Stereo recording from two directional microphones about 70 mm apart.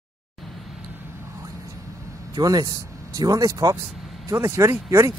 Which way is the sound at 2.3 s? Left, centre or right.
Right.